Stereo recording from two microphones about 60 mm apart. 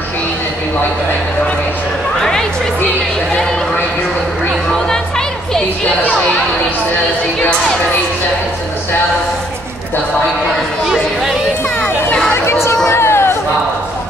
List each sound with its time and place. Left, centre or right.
2.1 s chatter: centre
12.4 s speech: left
12.9 s a sound: left